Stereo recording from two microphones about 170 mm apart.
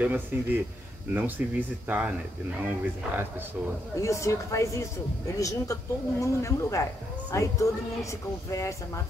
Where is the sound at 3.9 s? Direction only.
20° left (ahead or behind).